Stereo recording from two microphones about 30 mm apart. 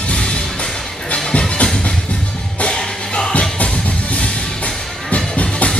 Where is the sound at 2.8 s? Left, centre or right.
Left.